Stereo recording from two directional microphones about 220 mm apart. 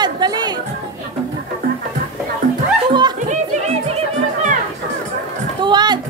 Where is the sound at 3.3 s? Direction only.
30° right (ahead or behind).